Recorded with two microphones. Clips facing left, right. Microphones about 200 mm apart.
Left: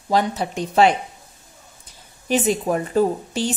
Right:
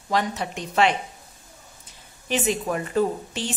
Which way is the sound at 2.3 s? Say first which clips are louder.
Left 5 dB; 35° left (ahead or behind).